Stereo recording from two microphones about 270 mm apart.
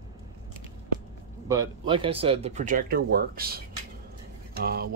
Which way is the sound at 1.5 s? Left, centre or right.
Centre.